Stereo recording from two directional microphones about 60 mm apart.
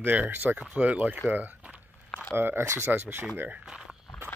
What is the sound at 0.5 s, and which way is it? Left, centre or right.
Speech, right.